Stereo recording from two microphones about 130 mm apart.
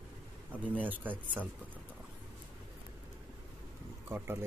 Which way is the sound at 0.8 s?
15° right (ahead or behind).